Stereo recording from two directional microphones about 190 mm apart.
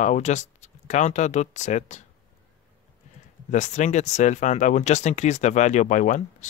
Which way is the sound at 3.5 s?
40° left (ahead or behind).